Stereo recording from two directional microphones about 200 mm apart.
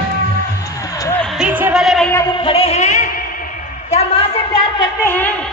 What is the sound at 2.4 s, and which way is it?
Music, 30° left (ahead or behind).